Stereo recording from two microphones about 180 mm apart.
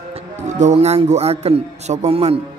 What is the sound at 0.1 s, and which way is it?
A man's voice, 40° right (ahead or behind).